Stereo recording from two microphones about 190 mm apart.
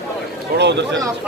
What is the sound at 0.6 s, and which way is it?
Speech, 65° right (ahead or behind).